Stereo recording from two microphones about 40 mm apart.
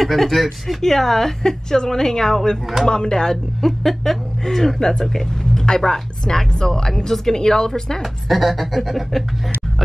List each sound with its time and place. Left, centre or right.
0.0 s a woman's voice: centre
4.7 s speech: centre
8.0 s speech: centre